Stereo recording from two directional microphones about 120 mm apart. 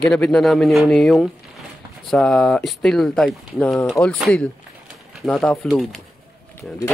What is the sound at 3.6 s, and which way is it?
Speech, 10° left (ahead or behind).